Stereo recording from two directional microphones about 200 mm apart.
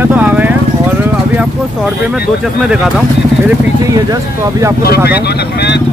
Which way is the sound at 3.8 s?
15° right (ahead or behind).